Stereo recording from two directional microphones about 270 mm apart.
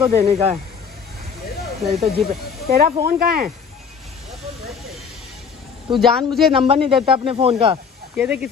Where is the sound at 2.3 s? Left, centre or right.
Right.